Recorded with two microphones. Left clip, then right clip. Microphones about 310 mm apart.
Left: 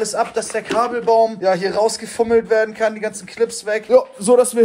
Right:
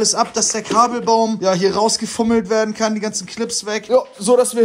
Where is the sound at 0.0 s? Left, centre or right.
Centre.